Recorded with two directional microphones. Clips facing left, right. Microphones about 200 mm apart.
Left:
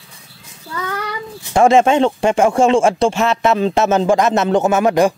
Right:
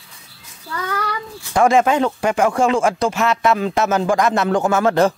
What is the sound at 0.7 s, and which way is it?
A child's voice, 20° left (ahead or behind).